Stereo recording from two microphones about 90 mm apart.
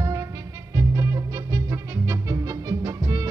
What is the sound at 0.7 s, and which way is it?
Music, 35° right (ahead or behind).